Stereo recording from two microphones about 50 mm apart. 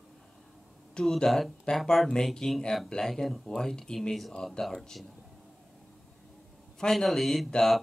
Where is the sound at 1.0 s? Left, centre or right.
Centre.